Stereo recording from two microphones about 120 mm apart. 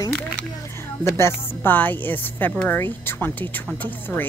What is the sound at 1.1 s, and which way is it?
Speech, 20° left (ahead or behind).